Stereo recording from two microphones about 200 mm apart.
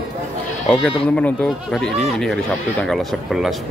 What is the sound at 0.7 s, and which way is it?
Speech, 5° left (ahead or behind).